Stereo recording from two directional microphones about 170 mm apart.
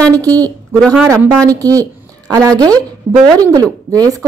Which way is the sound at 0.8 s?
5° right (ahead or behind).